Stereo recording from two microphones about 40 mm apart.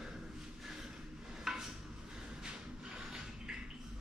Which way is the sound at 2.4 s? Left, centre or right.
Centre.